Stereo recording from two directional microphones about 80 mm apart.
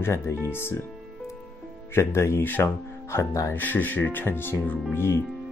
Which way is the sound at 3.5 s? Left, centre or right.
Left.